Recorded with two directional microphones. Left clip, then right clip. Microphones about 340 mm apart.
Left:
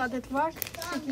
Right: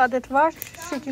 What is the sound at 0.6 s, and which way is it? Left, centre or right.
Speech, left.